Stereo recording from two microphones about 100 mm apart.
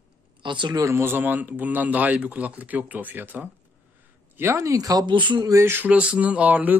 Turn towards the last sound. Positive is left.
turn(degrees=-15)  # may be behind; listen again after turning